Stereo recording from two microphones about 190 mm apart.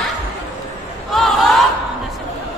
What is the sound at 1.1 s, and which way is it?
Battle cry, centre (ahead or behind).